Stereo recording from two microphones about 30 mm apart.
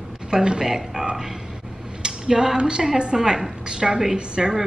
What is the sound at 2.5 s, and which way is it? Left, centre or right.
Speech, right.